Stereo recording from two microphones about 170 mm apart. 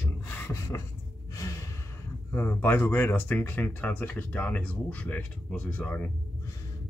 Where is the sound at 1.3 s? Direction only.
20° left (ahead or behind).